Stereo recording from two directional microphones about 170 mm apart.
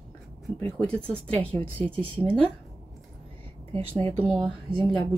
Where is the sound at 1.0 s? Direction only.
35° right (ahead or behind).